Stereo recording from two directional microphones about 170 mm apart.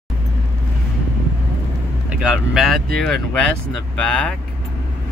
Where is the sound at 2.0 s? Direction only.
5° right (ahead or behind).